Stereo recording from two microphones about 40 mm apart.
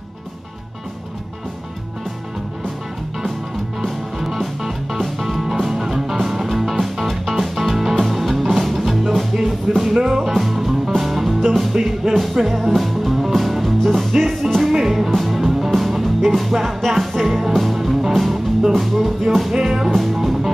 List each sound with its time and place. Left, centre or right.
3.8 s music: centre
9.9 s music: centre
10.2 s music: centre
19.9 s music: centre